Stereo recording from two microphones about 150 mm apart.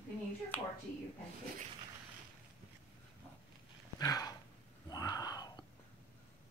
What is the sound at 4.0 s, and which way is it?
Dog, 25° left (ahead or behind).